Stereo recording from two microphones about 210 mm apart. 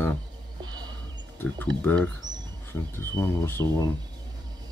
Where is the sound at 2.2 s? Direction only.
35° right (ahead or behind).